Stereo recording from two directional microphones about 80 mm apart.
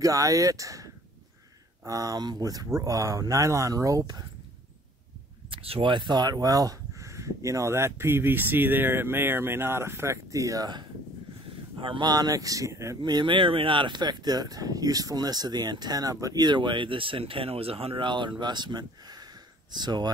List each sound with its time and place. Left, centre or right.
0.0 s speech: right
5.5 s speech: right
11.8 s speech: right
12.1 s speech: right
13.0 s speech: right
16.4 s speech: right